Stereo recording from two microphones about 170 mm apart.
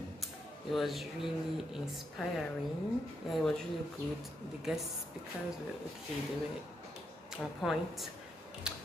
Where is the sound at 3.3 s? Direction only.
Centre (ahead or behind).